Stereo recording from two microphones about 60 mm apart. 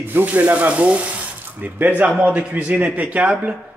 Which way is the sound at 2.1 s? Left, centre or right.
Centre.